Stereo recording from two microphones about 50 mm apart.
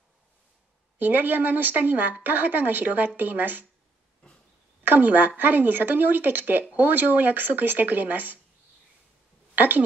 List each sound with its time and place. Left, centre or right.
0.9 s a woman's voice: right
4.8 s a woman's voice: right
9.6 s speech: right